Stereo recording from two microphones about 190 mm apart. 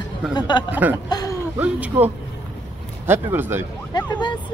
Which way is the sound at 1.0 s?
20° left (ahead or behind).